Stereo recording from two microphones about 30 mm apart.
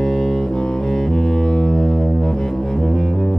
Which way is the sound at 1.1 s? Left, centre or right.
Left.